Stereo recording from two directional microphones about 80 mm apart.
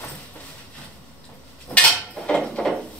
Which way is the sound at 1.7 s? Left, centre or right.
Centre.